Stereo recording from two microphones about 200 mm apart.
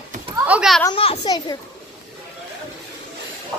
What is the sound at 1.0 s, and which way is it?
Speech, 25° left (ahead or behind).